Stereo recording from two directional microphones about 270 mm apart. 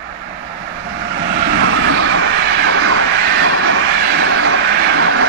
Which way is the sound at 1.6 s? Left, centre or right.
Right.